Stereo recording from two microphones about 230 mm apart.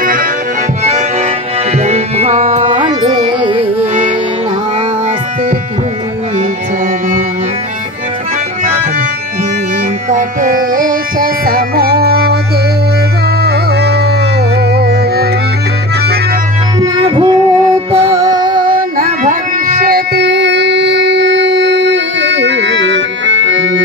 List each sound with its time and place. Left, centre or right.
0.0 s accordion: right
1.7 s music: right
10.0 s music: right
13.4 s music: right
16.8 s music: centre
18.9 s a sound: right